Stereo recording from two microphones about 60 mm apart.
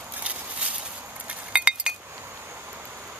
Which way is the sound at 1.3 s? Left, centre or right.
Centre.